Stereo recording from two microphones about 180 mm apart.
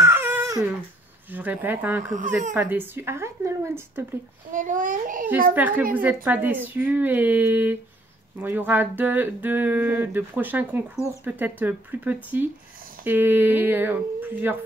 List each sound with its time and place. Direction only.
0.0 s crying: 10° right (ahead or behind)
1.3 s speech: 10° right (ahead or behind)
2.1 s a child's voice: 45° right (ahead or behind)
2.5 s speech: 10° right (ahead or behind)
4.5 s a child's voice: 45° right (ahead or behind)
5.5 s speech: 10° right (ahead or behind)